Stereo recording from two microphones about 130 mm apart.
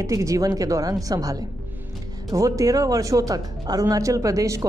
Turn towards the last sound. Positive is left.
turn(degrees=-25)  # may be behind; listen again after turning